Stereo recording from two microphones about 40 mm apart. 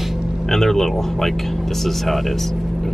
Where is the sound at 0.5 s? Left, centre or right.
Centre.